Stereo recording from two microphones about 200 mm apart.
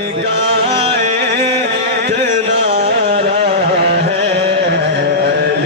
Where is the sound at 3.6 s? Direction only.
50° right (ahead or behind).